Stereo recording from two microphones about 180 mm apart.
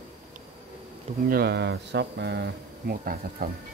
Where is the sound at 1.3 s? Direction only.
65° right (ahead or behind).